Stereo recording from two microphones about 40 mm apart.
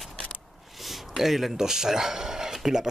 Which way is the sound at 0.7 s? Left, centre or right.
Centre.